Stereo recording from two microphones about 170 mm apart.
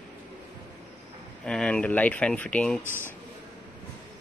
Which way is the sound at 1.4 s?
5° left (ahead or behind).